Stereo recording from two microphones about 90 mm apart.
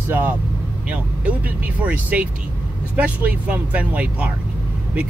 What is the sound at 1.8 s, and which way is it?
Speech, 15° right (ahead or behind).